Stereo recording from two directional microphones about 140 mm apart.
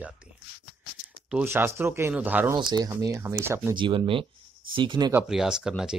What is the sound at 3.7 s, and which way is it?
Speech, 35° right (ahead or behind).